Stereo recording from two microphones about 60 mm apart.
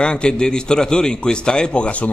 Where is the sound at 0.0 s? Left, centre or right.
Centre.